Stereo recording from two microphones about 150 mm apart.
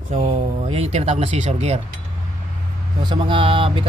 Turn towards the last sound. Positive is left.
turn(degrees=-35)  # may be behind; listen again after turning